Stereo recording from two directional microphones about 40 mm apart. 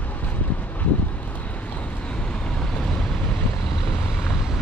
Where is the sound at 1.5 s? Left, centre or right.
Left.